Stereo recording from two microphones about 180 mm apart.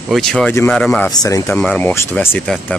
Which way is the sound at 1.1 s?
20° left (ahead or behind).